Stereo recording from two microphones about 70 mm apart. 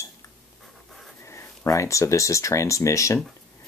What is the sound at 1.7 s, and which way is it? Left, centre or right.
Speech, left.